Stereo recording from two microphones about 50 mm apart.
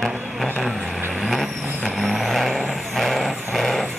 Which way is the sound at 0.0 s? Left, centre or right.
Centre.